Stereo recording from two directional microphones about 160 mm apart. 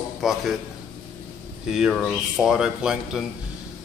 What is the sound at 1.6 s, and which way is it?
Speech, centre (ahead or behind).